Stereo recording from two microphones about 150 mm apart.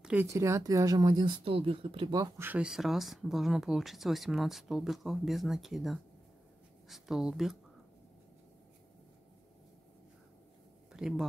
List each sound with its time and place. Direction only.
0.0 s speech: 10° right (ahead or behind)
0.3 s speech: 20° right (ahead or behind); by 2.2 s 35° right (ahead or behind)
2.3 s speech: 10° right (ahead or behind)
10.9 s speech: 5° right (ahead or behind)